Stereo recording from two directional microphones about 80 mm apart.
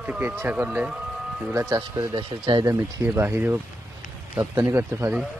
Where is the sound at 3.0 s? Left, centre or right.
Right.